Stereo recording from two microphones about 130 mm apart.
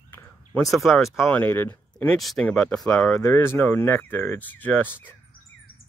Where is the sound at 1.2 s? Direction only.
15° left (ahead or behind).